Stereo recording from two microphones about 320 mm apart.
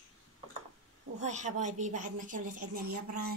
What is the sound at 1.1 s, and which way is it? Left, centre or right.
A woman's voice, right.